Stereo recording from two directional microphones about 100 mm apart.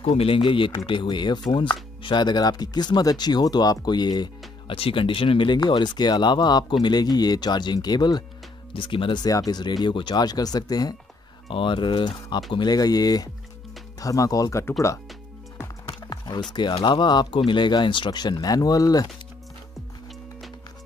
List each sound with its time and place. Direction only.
0.1 s speech: 75° left (ahead or behind)
0.4 s speech: 55° left (ahead or behind)
4.6 s speech: 65° left (ahead or behind); by 8.2 s 45° left (ahead or behind)
8.7 s speech: 60° left (ahead or behind)
9.2 s speech: 40° left (ahead or behind)
11.4 s speech: 60° left (ahead or behind); by 14.7 s 35° left (ahead or behind)
15.9 s music: 45° left (ahead or behind)
16.5 s speech: 50° left (ahead or behind)